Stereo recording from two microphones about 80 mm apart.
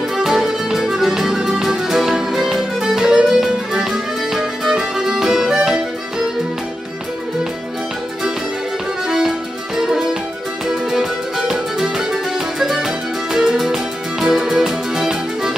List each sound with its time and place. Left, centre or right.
0.2 s music: centre
9.8 s music: centre